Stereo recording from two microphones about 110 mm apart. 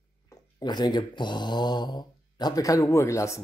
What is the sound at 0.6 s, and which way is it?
Speech, 40° left (ahead or behind).